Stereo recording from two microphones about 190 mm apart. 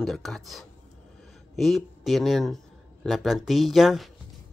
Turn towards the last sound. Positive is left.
turn(degrees=0)  # may be behind; listen again after turning